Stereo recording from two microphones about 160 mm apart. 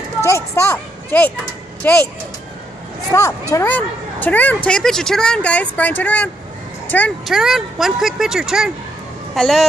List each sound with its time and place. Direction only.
0.2 s a child's voice: 15° left (ahead or behind)
3.1 s speech: 20° left (ahead or behind)
7.2 s speech: centre (ahead or behind)